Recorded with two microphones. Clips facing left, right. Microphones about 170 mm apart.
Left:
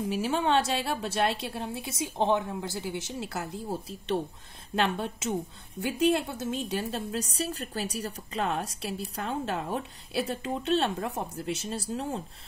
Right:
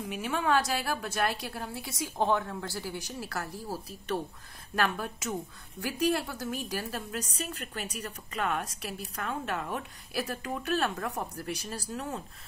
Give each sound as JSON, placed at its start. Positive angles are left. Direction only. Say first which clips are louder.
{"t": 0.0, "sound": "a woman's voice", "louder": "left 4 dB", "side_deg": 30}